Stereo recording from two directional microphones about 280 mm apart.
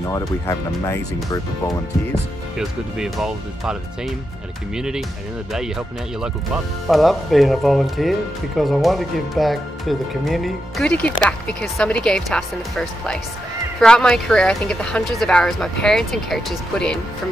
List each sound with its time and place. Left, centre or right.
0.1 s speech: centre
2.5 s speech: centre